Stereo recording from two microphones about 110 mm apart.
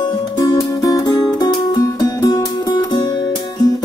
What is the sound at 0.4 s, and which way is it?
Music, 30° left (ahead or behind).